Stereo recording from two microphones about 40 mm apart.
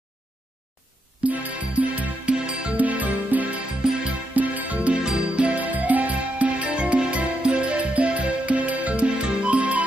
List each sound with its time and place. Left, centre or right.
1.2 s music: right
3.8 s music: centre
4.3 s music: right
9.6 s music: right